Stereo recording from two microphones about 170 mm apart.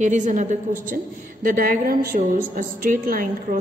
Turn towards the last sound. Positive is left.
turn(degrees=-55)  # may be behind; listen again after turning